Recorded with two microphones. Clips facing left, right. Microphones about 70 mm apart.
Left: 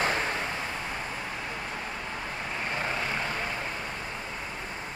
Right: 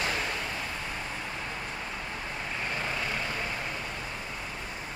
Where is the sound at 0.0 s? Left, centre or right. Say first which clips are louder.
Left 3 dB; left.